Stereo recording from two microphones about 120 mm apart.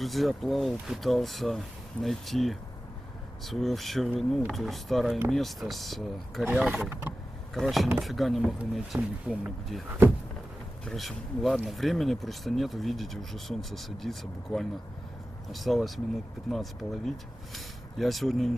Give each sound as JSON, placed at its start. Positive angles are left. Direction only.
{"t": 0.0, "sound": "speech", "side_deg": 0}
{"t": 6.9, "sound": "vehicle", "side_deg": -15}
{"t": 7.5, "sound": "speech", "side_deg": 0}
{"t": 10.9, "sound": "speech", "side_deg": 0}